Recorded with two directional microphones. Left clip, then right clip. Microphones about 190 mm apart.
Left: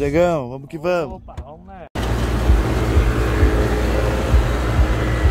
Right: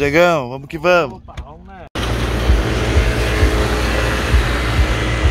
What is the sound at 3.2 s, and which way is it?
Vehicle, 55° left (ahead or behind).